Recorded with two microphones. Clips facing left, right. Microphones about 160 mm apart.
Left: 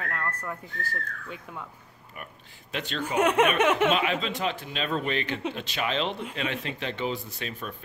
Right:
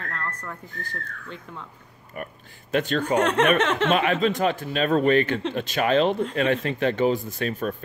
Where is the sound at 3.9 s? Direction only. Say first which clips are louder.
Right 5 dB; 50° right (ahead or behind).